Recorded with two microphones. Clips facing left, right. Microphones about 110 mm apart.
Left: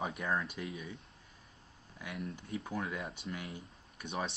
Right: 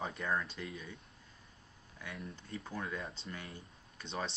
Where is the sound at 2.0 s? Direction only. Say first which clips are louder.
Left 4 dB; 10° left (ahead or behind).